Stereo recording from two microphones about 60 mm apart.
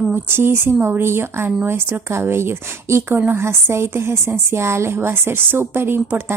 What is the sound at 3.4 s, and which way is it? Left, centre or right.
Speech, right.